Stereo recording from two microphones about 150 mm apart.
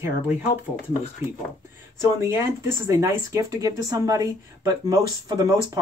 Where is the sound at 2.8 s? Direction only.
20° right (ahead or behind).